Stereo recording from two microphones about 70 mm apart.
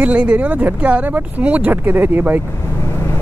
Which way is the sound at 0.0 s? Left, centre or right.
Centre.